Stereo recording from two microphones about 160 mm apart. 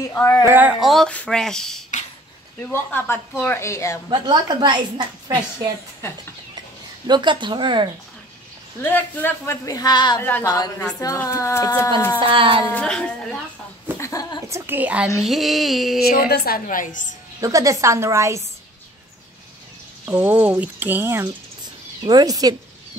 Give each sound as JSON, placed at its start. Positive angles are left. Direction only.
{"t": 0.0, "sound": "speech", "side_deg": 15}
{"t": 0.5, "sound": "speech", "side_deg": -10}
{"t": 0.7, "sound": "speech", "side_deg": 0}
{"t": 4.1, "sound": "a woman's voice", "side_deg": -30}
{"t": 6.0, "sound": "speech", "side_deg": 15}
{"t": 7.1, "sound": "a woman's voice", "side_deg": -30}
{"t": 8.9, "sound": "speech", "side_deg": 15}
{"t": 12.2, "sound": "speech", "side_deg": -35}
{"t": 12.7, "sound": "speech", "side_deg": 5}
{"t": 13.9, "sound": "a sound", "side_deg": 20}
{"t": 14.5, "sound": "speech", "side_deg": -10}
{"t": 16.1, "sound": "a woman's voice", "side_deg": 75}
{"t": 17.4, "sound": "speech", "side_deg": -20}
{"t": 20.1, "sound": "a woman's voice", "side_deg": -10}